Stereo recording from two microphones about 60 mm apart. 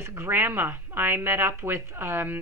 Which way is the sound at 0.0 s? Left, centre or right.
Right.